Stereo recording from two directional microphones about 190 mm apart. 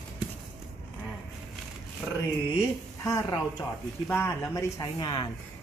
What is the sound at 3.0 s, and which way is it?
Speech, 15° left (ahead or behind).